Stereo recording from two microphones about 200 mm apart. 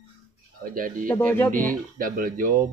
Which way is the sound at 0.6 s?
45° right (ahead or behind).